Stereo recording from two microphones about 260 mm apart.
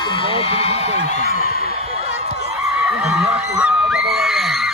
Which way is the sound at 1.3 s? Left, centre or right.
Left.